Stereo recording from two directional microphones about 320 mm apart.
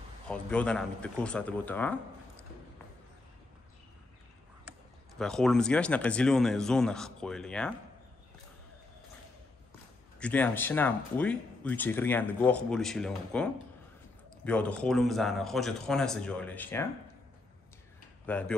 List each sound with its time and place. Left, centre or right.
0.3 s speech: centre
5.2 s speech: centre
10.1 s speech: centre
18.3 s speech: centre